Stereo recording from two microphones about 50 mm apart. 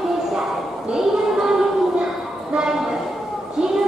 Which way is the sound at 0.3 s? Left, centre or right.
Centre.